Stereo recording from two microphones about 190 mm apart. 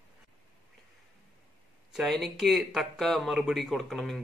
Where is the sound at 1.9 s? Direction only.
Centre (ahead or behind).